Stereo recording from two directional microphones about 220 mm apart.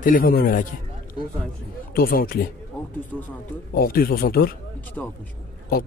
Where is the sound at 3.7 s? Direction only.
45° left (ahead or behind).